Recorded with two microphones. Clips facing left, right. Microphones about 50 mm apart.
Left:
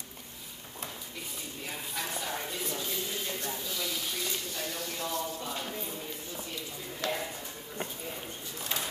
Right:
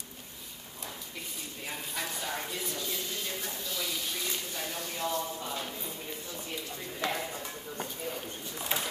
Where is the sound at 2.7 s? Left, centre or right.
Centre.